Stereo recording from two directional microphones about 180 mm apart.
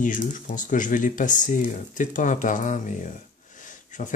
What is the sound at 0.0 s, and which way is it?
Speech, 45° left (ahead or behind).